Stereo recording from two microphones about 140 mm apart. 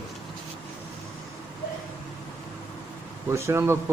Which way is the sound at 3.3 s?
20° right (ahead or behind).